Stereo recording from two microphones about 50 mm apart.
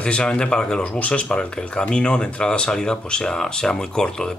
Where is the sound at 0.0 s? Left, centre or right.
Centre.